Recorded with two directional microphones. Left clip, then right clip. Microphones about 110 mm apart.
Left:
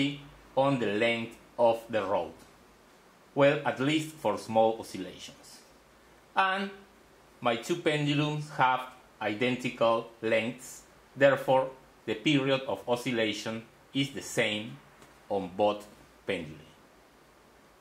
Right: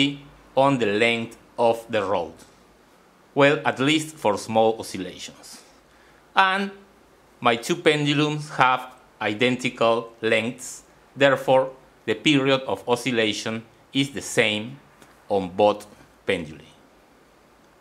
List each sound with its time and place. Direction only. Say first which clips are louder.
0.6 s speech: right 8 dB; 35° right (ahead or behind)
3.3 s speech: right 6 dB; 40° right (ahead or behind)
4.9 s speech: right 7 dB; 50° right (ahead or behind)
6.3 s speech: right 8 dB; 40° right (ahead or behind)